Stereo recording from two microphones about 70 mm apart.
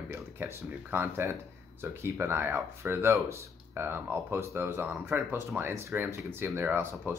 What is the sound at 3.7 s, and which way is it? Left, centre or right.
Speech, right.